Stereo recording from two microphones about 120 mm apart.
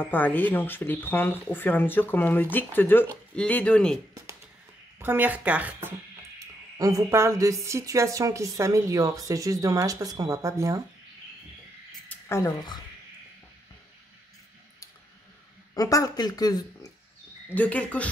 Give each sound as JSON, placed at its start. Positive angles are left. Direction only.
{"t": 0.0, "sound": "speech", "side_deg": 15}
{"t": 4.9, "sound": "speech", "side_deg": -15}
{"t": 6.4, "sound": "a woman's voice", "side_deg": -25}
{"t": 12.1, "sound": "a sound", "side_deg": 25}
{"t": 15.7, "sound": "speech", "side_deg": 30}
{"t": 17.5, "sound": "speech", "side_deg": 10}